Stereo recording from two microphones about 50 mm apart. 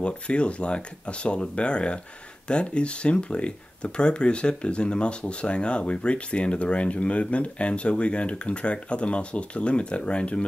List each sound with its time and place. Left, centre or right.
0.0 s speech: left